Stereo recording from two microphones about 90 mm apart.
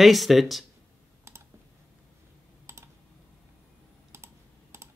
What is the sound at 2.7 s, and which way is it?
Typing, 25° right (ahead or behind).